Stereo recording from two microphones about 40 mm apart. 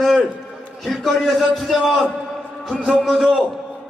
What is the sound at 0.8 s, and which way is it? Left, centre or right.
A man's voice, centre.